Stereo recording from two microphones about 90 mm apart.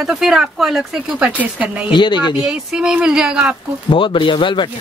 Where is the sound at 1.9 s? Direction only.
60° left (ahead or behind).